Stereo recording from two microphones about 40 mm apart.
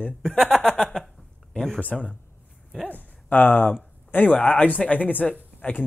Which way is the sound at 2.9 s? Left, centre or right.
Left.